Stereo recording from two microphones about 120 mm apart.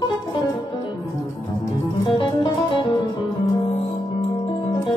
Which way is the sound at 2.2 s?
45° left (ahead or behind).